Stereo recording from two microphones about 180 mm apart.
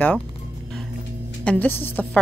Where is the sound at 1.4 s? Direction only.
10° left (ahead or behind).